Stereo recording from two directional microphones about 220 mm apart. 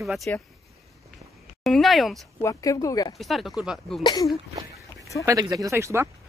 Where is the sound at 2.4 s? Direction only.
15° left (ahead or behind).